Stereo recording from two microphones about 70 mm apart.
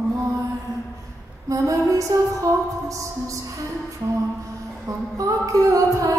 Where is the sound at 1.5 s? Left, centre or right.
Right.